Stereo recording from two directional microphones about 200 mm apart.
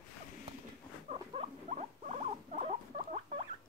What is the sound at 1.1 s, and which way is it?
Rodents, 35° right (ahead or behind).